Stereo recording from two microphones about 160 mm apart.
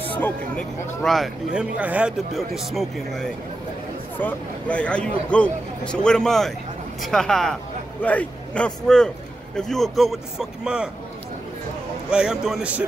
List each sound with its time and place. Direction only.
0.2 s a man's voice: 5° left (ahead or behind)
12.1 s speech: 5° right (ahead or behind)